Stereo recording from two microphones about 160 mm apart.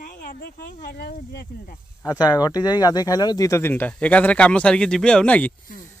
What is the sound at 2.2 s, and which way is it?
Speech, 25° left (ahead or behind).